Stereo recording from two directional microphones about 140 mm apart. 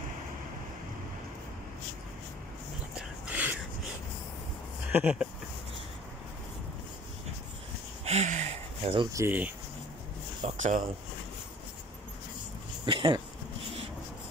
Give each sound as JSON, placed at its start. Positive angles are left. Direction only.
{"t": 3.0, "sound": "a sound", "side_deg": -10}
{"t": 4.9, "sound": "speech", "side_deg": -5}
{"t": 8.0, "sound": "a sound", "side_deg": -55}
{"t": 9.0, "sound": "speech", "side_deg": -20}
{"t": 10.4, "sound": "speech", "side_deg": -60}
{"t": 12.8, "sound": "speech", "side_deg": -35}